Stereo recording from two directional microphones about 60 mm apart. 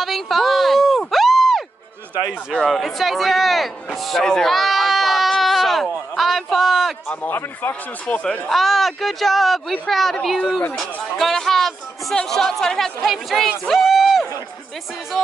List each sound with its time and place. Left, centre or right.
0.0 s a sound: centre
2.6 s a man's voice: centre
4.5 s bleat: centre
7.2 s speech: left
8.5 s a man's voice: centre
15.1 s music: centre